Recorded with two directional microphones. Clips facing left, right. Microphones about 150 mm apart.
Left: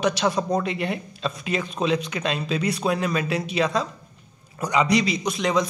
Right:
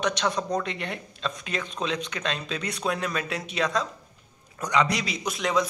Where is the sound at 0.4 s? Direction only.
30° left (ahead or behind).